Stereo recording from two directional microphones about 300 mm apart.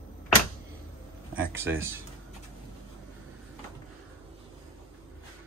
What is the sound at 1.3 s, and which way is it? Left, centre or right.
Speech, centre.